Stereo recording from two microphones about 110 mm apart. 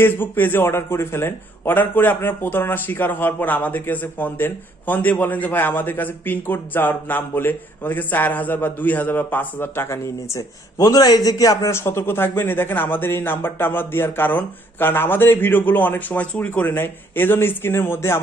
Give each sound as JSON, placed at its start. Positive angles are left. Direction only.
{"t": 0.0, "sound": "a man's voice", "side_deg": 20}